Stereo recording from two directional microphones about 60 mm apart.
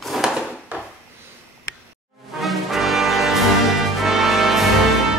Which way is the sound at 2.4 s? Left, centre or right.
Centre.